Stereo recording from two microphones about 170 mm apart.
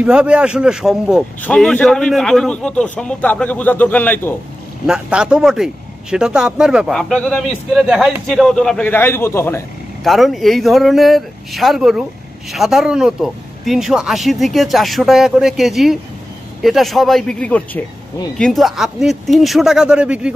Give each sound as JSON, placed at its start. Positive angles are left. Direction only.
{"t": 0.0, "sound": "a man's voice", "side_deg": -5}
{"t": 4.8, "sound": "speech", "side_deg": -5}
{"t": 10.0, "sound": "speech", "side_deg": 0}